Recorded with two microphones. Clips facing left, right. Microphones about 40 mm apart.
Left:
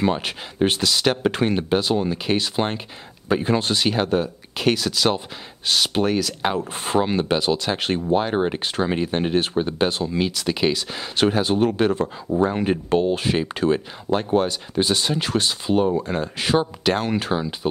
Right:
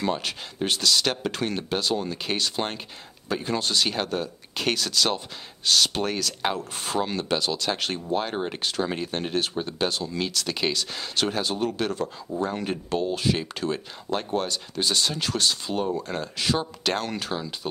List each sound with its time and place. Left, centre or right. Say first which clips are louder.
0.0 s speech: left 5 dB; left
6.5 s speech: left 6 dB; left